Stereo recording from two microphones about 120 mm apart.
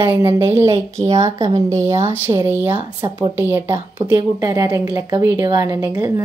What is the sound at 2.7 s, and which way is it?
Speech, 50° right (ahead or behind).